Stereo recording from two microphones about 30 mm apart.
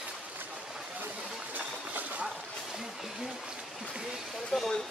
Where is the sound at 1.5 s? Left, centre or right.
Right.